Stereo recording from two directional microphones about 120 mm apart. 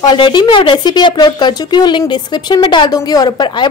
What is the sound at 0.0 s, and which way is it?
A woman's voice, 40° left (ahead or behind).